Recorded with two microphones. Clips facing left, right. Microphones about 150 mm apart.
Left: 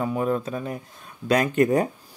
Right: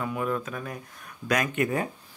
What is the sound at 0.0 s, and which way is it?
Speech, 35° left (ahead or behind).